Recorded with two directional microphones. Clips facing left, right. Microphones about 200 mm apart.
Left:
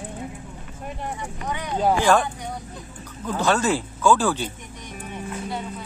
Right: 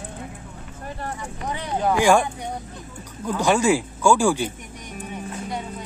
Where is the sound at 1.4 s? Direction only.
30° right (ahead or behind).